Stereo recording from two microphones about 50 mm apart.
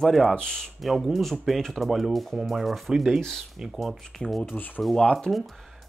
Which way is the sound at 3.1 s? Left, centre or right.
Centre.